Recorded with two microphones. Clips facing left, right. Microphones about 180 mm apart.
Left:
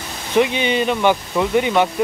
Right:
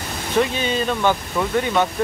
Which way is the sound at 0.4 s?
20° left (ahead or behind).